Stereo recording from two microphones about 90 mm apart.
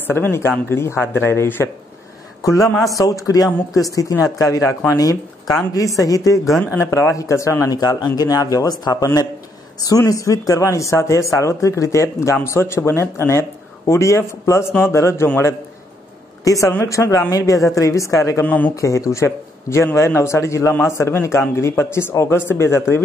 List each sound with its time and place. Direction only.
0.0 s speech: 25° left (ahead or behind)
7.8 s speech: 50° left (ahead or behind); by 15.5 s 25° left (ahead or behind)
16.4 s speech: 40° left (ahead or behind)
18.4 s speech: 20° left (ahead or behind)
18.8 s speech: 35° left (ahead or behind)